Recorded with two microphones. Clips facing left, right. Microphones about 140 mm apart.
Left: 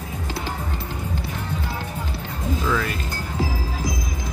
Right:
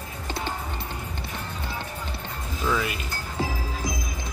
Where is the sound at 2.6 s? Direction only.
10° right (ahead or behind).